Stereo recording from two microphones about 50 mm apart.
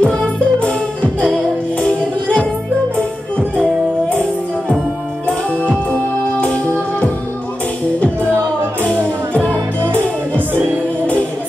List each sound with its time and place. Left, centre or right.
0.0 s music: left